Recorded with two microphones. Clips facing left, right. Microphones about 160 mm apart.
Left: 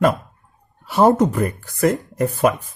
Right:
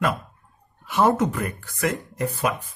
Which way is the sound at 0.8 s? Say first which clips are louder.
Left 5 dB; 35° left (ahead or behind).